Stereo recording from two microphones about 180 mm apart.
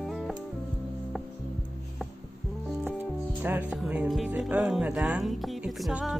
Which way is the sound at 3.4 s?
10° right (ahead or behind).